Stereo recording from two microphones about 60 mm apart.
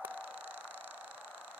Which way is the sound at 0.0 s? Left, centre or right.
Right.